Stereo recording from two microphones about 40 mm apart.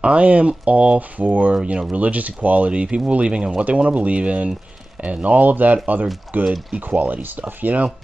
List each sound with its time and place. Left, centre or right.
0.0 s speech: right
1.5 s speech: right
2.0 s speech: right